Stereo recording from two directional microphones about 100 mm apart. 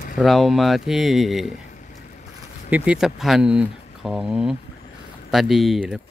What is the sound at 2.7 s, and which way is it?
Speech, 10° right (ahead or behind).